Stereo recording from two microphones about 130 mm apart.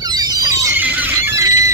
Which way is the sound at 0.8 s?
15° right (ahead or behind).